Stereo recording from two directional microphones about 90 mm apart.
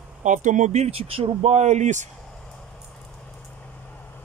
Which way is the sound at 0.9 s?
90° right.